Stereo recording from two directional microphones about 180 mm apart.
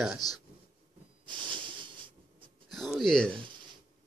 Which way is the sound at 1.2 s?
25° right (ahead or behind).